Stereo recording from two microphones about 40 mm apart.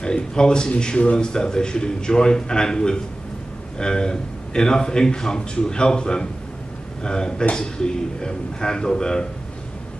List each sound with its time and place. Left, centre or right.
0.0 s a man's voice: centre